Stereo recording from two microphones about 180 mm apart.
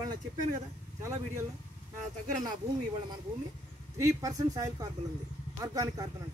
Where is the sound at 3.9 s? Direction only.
20° right (ahead or behind).